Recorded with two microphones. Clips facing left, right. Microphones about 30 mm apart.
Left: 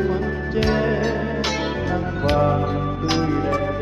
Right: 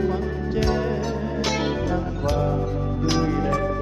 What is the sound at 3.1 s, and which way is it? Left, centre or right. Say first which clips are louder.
Music: left 2 dB; centre.